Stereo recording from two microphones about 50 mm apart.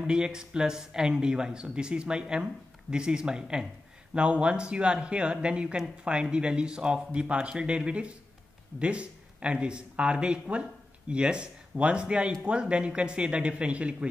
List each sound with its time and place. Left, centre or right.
0.0 s speech: centre